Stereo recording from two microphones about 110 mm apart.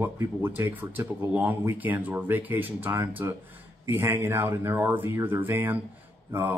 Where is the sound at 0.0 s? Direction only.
20° right (ahead or behind).